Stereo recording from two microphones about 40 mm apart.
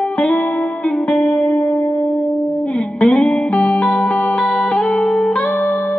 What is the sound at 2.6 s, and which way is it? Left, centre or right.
Music, left.